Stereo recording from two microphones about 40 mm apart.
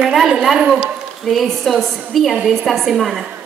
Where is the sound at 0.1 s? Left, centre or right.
Centre.